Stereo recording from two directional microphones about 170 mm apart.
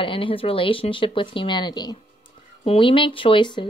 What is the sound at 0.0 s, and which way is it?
Speech, 30° left (ahead or behind).